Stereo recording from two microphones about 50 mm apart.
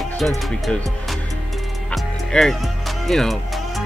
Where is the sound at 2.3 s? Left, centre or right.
Centre.